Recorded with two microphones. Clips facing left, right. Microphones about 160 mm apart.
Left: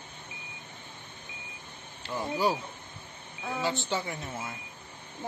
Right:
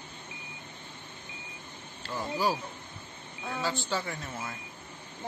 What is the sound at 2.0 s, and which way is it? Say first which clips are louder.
Speech: left 2 dB; 20° left (ahead or behind).